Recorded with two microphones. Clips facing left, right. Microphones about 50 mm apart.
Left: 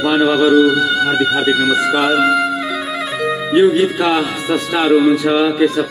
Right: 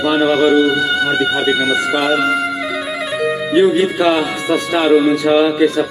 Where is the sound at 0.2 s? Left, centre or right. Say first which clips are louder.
Left 2 dB; right.